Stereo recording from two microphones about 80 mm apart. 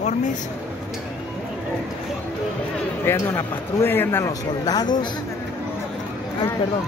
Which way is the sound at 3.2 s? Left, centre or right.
Left.